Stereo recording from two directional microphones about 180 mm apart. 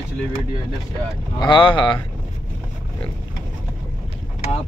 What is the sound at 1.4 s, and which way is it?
Speech, 25° left (ahead or behind).